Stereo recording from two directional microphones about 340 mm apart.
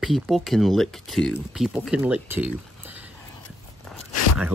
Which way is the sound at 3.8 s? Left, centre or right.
Centre.